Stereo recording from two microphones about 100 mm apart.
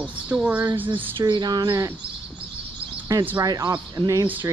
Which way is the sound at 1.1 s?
45° right (ahead or behind).